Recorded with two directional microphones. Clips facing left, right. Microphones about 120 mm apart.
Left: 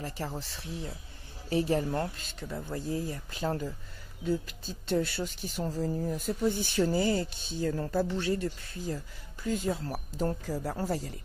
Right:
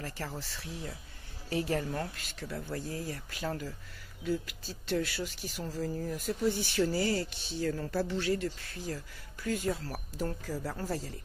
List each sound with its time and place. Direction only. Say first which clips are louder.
0.0 s speech: left 3 dB; 20° left (ahead or behind)